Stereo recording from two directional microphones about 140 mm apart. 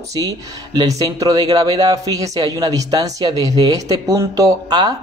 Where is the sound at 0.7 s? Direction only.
25° right (ahead or behind).